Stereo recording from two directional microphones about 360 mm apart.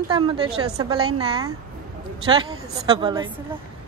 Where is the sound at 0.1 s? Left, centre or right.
Centre.